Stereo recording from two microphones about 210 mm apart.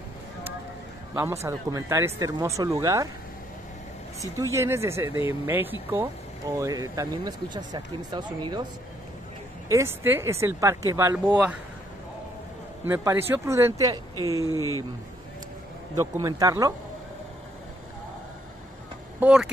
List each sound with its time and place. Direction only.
1.1 s speech: 10° right (ahead or behind)
4.2 s speech: 15° right (ahead or behind)
9.7 s speech: 15° right (ahead or behind)
12.8 s speech: 10° right (ahead or behind)
14.4 s speech: 15° left (ahead or behind)
16.0 s speech: 15° right (ahead or behind)
19.1 s speech: 5° right (ahead or behind)